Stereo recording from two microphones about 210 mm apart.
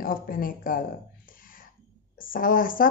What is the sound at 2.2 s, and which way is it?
Speech, 40° left (ahead or behind).